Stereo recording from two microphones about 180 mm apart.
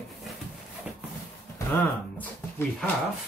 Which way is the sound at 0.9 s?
5° right (ahead or behind).